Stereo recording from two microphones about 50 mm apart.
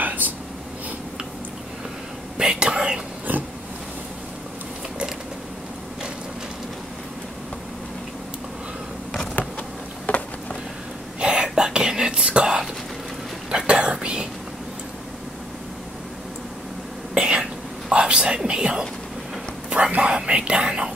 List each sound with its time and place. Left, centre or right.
0.0 s a sound: right
2.3 s whispering: centre
10.0 s a sound: left
11.1 s whispering: centre
17.1 s whispering: centre
20.0 s whispering: centre